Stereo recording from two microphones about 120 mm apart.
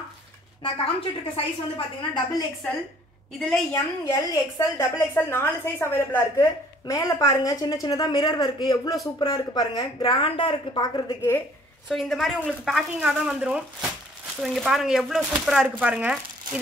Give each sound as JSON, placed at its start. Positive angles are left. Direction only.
{"t": 0.6, "sound": "a woman's voice", "side_deg": 45}
{"t": 3.3, "sound": "speech", "side_deg": 5}
{"t": 3.7, "sound": "a woman's voice", "side_deg": 25}
{"t": 11.1, "sound": "a woman's voice", "side_deg": 20}
{"t": 11.9, "sound": "speech", "side_deg": 0}